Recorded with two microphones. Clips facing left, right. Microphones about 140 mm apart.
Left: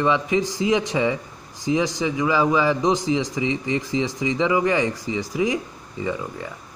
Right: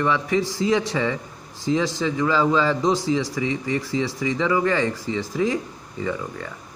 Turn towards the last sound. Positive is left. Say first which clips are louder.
# even
turn(degrees=15)  # may be behind; listen again after turning